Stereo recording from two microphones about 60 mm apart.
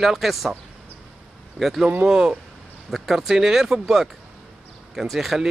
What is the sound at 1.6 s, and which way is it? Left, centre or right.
Speech, centre.